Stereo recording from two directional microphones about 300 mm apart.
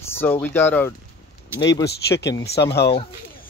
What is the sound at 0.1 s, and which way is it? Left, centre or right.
Speech, centre.